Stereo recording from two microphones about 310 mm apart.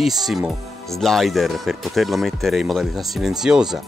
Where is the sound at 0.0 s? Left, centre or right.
Centre.